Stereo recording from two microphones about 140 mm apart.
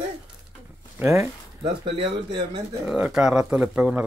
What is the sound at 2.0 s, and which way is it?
Speech, 35° right (ahead or behind).